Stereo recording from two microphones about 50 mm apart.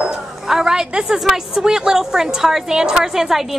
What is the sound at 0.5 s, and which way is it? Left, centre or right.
A woman's voice, centre.